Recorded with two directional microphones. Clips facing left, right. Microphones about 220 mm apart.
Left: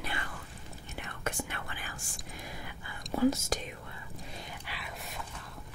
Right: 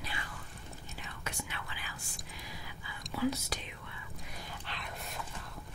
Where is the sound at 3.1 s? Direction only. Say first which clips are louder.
Left 6 dB; 45° left (ahead or behind).